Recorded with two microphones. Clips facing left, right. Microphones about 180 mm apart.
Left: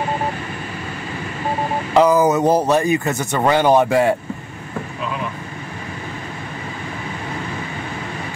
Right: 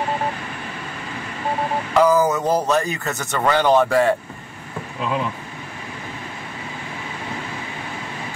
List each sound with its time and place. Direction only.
2.0 s a man's voice: 20° left (ahead or behind)